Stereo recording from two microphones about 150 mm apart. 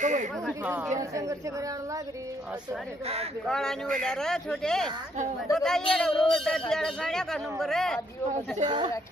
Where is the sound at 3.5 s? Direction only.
5° left (ahead or behind).